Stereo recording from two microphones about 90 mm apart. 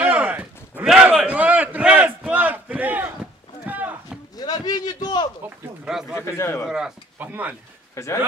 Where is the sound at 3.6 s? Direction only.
15° right (ahead or behind).